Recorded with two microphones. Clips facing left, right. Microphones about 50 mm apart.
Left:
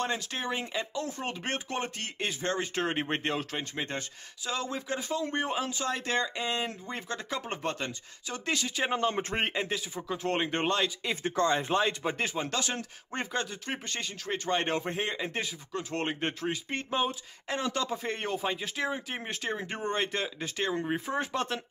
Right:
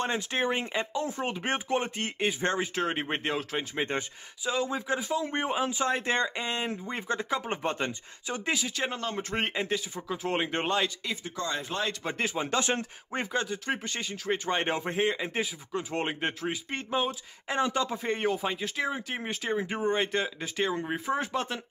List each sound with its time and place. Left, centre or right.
0.0 s speech: right
0.9 s speech: centre
2.6 s speech: centre
3.7 s speech: right
4.5 s speech: centre
8.9 s speech: left
9.3 s speech: centre
11.2 s speech: left
11.5 s speech: centre
12.4 s speech: right
13.1 s speech: centre
17.5 s speech: centre
17.8 s speech: centre